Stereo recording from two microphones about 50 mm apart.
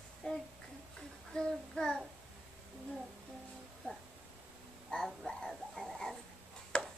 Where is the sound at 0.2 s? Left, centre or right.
Centre.